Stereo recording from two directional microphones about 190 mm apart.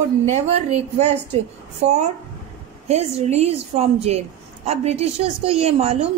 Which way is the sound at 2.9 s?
35° right (ahead or behind).